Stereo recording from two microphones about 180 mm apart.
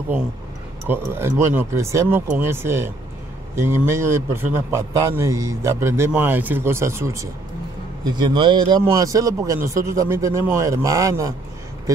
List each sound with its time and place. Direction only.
0.8 s a man's voice: 15° right (ahead or behind)